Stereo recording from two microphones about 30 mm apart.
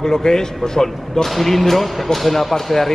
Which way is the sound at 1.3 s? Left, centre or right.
Centre.